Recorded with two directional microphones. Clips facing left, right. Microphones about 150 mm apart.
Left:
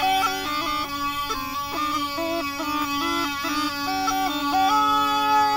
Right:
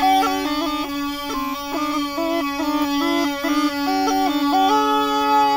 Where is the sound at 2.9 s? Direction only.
45° right (ahead or behind).